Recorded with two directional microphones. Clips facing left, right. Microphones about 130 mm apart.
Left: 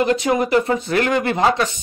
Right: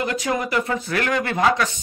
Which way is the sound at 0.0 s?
25° left (ahead or behind).